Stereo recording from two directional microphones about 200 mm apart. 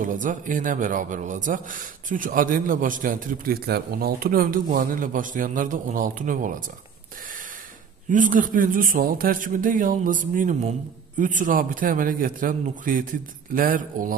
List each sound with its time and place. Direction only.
0.0 s a man's voice: 40° right (ahead or behind)
8.1 s a man's voice: 40° right (ahead or behind)